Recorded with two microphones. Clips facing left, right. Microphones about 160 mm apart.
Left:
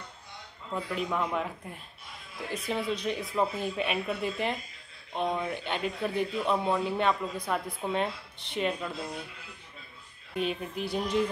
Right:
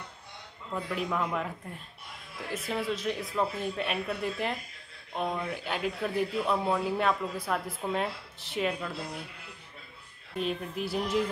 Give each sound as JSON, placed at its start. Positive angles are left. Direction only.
{"t": 0.9, "sound": "a man's voice", "side_deg": 0}
{"t": 10.3, "sound": "a man's voice", "side_deg": 0}